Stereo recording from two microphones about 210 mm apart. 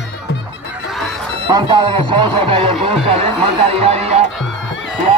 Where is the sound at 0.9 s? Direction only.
Centre (ahead or behind).